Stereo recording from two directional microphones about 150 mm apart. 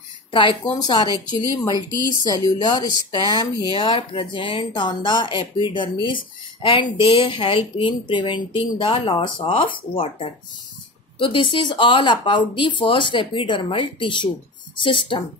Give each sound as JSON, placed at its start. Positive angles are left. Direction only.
{"t": 0.3, "sound": "a woman's voice", "side_deg": 35}
{"t": 11.1, "sound": "speech", "side_deg": 35}